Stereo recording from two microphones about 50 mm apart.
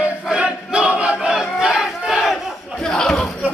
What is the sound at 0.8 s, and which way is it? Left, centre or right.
Battle cry, right.